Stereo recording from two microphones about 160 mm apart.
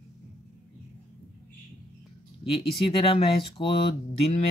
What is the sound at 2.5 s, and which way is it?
Speech, 35° left (ahead or behind).